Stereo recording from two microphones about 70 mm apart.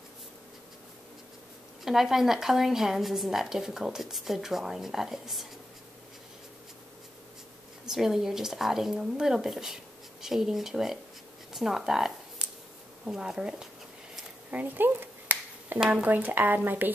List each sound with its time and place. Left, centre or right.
1.9 s a woman's voice: centre
7.8 s a woman's voice: centre
14.5 s finger snapping: right
15.9 s speech: right